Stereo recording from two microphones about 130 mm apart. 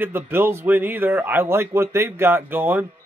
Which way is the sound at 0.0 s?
15° right (ahead or behind).